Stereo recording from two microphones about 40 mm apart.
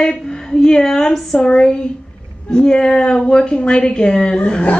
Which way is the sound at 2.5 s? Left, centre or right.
Centre.